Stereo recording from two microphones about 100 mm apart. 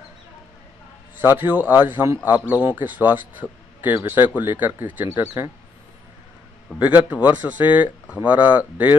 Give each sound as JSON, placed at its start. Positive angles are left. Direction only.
{"t": 1.2, "sound": "speech", "side_deg": -20}
{"t": 6.8, "sound": "speech", "side_deg": -15}